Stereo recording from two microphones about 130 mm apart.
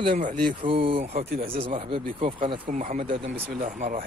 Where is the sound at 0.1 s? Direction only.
80° right.